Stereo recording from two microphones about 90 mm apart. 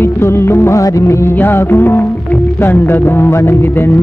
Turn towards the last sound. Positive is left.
turn(degrees=25)  # may be behind; listen again after turning